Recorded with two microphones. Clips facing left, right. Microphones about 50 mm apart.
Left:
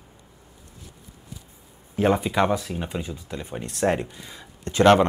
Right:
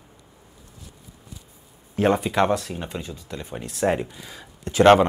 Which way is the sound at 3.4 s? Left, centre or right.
Centre.